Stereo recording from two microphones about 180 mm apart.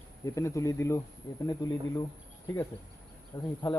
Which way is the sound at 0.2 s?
15° left (ahead or behind).